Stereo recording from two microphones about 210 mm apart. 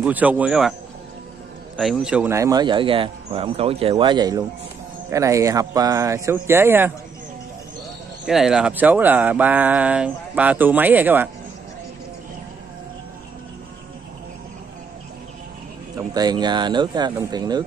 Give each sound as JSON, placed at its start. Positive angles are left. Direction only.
{"t": 0.0, "sound": "speech", "side_deg": -5}
{"t": 1.8, "sound": "speech", "side_deg": 0}
{"t": 8.3, "sound": "speech", "side_deg": 0}
{"t": 16.0, "sound": "speech", "side_deg": -20}